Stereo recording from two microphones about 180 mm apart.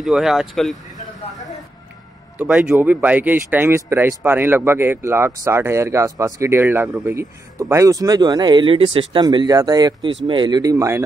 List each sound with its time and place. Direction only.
0.0 s speech: centre (ahead or behind)
2.3 s speech: 10° right (ahead or behind)